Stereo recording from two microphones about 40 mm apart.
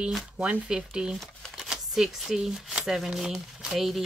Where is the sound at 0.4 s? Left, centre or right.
Right.